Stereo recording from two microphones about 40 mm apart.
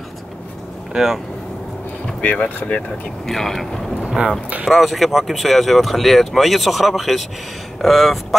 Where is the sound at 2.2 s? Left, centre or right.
Left.